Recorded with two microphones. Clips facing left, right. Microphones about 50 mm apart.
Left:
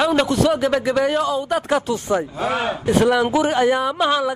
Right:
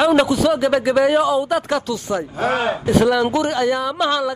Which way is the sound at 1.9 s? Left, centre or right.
Left.